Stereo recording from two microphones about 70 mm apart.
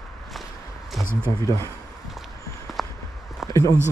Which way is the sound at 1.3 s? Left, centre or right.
Left.